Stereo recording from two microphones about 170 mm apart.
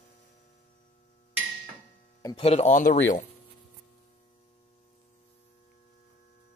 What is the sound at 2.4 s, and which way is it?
Speech, 35° left (ahead or behind).